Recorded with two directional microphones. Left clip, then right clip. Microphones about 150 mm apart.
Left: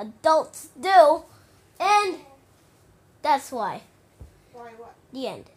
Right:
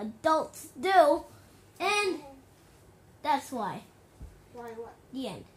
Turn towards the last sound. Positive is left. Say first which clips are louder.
# left 6 dB
turn(degrees=25)  # may be behind; listen again after turning